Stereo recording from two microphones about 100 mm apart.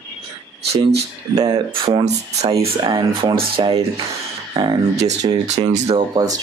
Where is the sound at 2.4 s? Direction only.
75° right (ahead or behind).